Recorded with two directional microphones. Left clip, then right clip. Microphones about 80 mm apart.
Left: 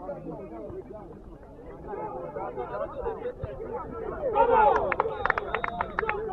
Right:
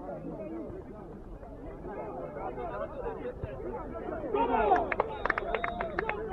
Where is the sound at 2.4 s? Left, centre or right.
Left.